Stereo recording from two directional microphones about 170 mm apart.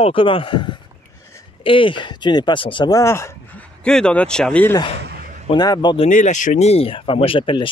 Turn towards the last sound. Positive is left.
turn(degrees=30)  # may be behind; listen again after turning